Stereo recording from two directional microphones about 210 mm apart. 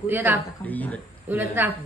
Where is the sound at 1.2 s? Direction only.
10° right (ahead or behind).